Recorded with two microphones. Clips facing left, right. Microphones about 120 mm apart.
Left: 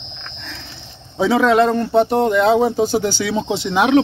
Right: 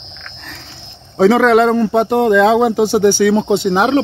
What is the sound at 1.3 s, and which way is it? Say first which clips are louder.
Speech: right 3 dB; 90° right.